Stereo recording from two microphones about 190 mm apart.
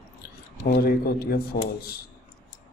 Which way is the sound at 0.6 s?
55° left (ahead or behind).